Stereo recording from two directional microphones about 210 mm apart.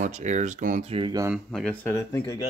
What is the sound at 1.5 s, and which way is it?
Speech, 5° left (ahead or behind).